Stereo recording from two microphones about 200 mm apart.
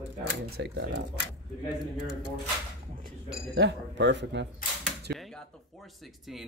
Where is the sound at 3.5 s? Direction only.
60° right (ahead or behind).